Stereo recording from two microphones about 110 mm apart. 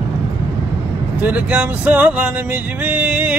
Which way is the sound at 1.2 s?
15° right (ahead or behind).